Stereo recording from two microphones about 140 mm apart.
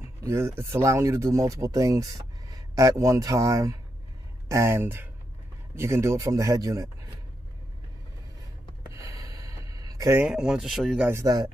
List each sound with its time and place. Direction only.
0.2 s speech: 20° right (ahead or behind)
8.9 s a sound: 25° right (ahead or behind)
10.2 s speech: 5° right (ahead or behind)
11.1 s speech: 20° right (ahead or behind)